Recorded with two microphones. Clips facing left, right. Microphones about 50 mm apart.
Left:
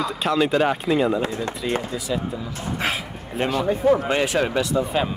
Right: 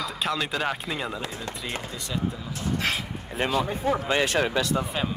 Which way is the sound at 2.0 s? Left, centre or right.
Centre.